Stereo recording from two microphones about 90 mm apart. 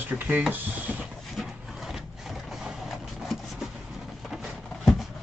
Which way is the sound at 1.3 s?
5° right (ahead or behind).